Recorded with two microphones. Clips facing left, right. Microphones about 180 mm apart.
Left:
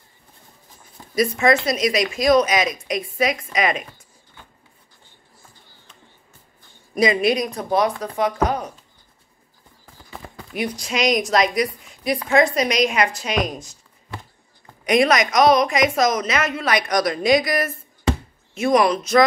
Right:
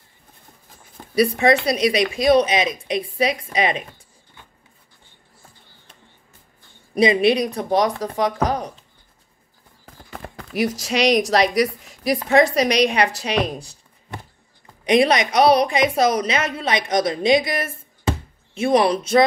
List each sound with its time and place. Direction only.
1.2 s a woman's voice: 35° right (ahead or behind)
7.0 s speech: 30° right (ahead or behind)
10.5 s a woman's voice: 40° right (ahead or behind)
14.9 s a woman's voice: 30° right (ahead or behind)